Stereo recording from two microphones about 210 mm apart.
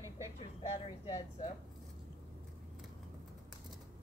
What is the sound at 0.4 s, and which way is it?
Speech, 30° left (ahead or behind).